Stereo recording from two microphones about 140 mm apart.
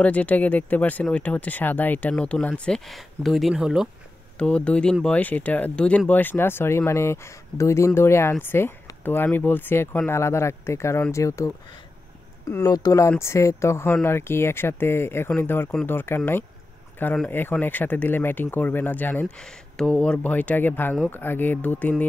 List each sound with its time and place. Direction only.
0.0 s speech: 10° left (ahead or behind)
4.4 s speech: 10° left (ahead or behind)